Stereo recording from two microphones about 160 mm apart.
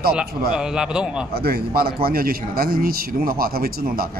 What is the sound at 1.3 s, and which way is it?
A man's voice, 75° right (ahead or behind).